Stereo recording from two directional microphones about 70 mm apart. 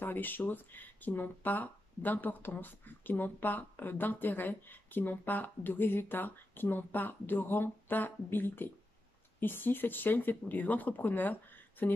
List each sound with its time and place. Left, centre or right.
0.0 s speech: left